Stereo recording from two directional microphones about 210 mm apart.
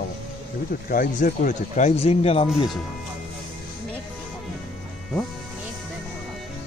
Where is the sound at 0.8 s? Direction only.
40° left (ahead or behind).